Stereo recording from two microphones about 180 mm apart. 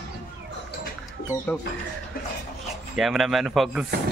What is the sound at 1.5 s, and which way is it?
Speech, 10° left (ahead or behind).